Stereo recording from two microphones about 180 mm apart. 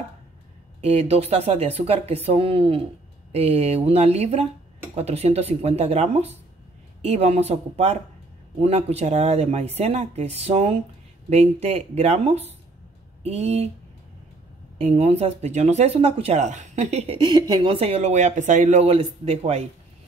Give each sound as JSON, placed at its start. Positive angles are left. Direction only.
{"t": 0.7, "sound": "speech", "side_deg": -35}
{"t": 14.8, "sound": "speech", "side_deg": -35}